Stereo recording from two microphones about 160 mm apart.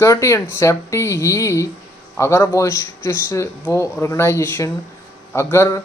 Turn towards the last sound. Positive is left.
turn(degrees=15)  # may be behind; listen again after turning